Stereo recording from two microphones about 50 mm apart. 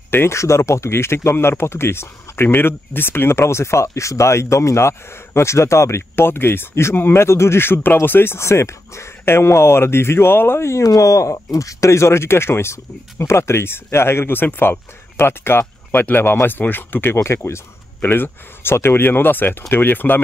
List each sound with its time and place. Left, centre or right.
0.1 s speech: left
0.4 s speech: left
8.4 s speech: left
10.7 s speech: left
15.9 s speech: left
18.0 s speech: left